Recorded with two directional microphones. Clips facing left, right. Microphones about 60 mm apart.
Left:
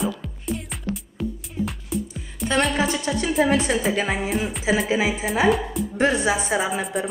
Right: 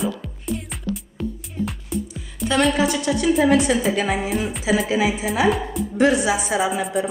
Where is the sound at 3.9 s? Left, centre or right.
Centre.